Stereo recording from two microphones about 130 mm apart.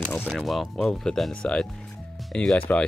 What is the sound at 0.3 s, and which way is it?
Speech, centre (ahead or behind).